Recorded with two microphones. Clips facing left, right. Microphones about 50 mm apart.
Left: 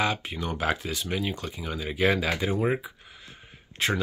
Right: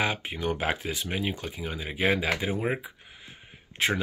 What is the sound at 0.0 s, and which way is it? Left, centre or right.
Speech, right.